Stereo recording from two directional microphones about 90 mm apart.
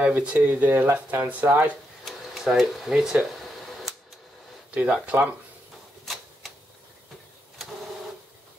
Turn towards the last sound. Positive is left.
turn(degrees=0)  # may be behind; listen again after turning